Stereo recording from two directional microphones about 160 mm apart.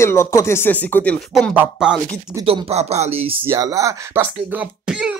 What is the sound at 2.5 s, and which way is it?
Speech, 40° right (ahead or behind).